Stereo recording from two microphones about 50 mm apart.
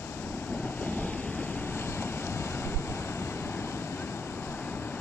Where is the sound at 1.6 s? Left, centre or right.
Left.